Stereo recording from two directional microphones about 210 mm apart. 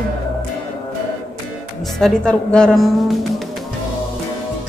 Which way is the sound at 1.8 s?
5° left (ahead or behind).